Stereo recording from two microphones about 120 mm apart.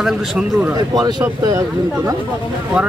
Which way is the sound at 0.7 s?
35° right (ahead or behind).